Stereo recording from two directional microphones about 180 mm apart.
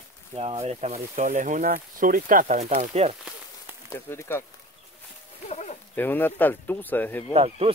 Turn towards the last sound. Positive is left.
turn(degrees=-35)  # may be behind; listen again after turning